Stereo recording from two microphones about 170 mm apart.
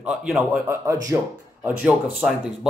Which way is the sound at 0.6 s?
15° right (ahead or behind).